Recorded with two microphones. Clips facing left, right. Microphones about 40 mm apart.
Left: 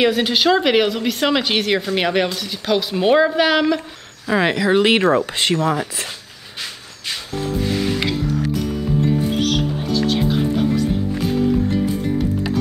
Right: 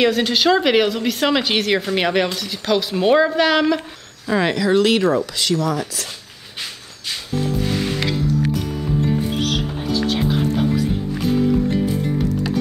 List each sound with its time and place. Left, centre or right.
0.0 s speech: centre
4.3 s speech: centre
7.3 s music: centre
9.0 s music: centre